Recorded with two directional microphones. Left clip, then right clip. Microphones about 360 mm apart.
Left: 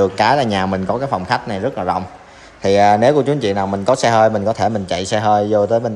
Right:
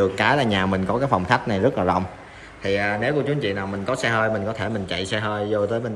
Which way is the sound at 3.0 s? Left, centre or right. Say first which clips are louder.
Left 9 dB; centre.